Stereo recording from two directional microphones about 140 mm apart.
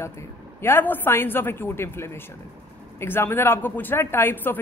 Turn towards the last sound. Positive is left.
turn(degrees=15)  # may be behind; listen again after turning